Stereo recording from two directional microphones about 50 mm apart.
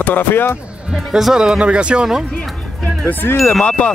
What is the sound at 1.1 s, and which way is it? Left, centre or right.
Speech, centre.